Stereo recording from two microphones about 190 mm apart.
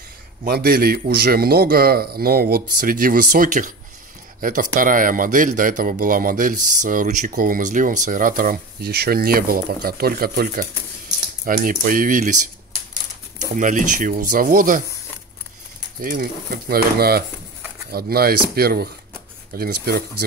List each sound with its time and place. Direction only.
0.5 s speech: 55° right (ahead or behind)
13.6 s speech: 45° right (ahead or behind)
16.0 s speech: 50° right (ahead or behind)